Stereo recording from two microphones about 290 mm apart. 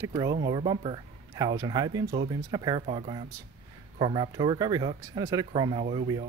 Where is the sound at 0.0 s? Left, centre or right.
Centre.